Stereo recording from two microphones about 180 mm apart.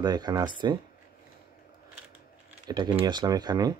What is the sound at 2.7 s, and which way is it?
Speech, 20° right (ahead or behind).